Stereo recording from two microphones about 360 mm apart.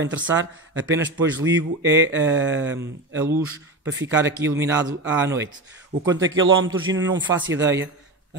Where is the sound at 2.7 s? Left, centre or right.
Centre.